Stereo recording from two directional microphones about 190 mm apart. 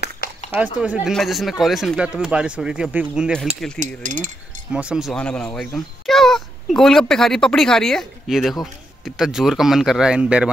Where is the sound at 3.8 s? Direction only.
40° right (ahead or behind).